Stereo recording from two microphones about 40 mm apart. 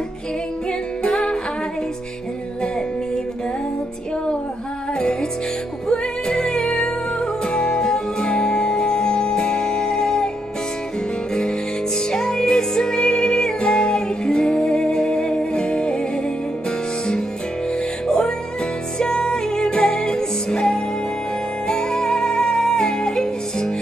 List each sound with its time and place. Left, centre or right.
0.7 s music: left
5.9 s music: centre
12.1 s music: centre
18.0 s music: centre